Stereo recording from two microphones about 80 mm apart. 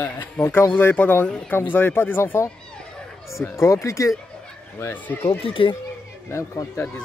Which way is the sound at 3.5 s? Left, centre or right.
Left.